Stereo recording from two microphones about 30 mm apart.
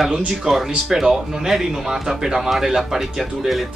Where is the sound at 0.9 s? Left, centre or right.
Centre.